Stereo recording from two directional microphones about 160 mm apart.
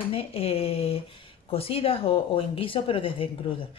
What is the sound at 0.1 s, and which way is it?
Speech, 35° left (ahead or behind).